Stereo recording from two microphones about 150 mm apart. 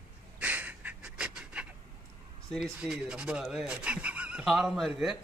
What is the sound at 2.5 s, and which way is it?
Speech, 5° right (ahead or behind).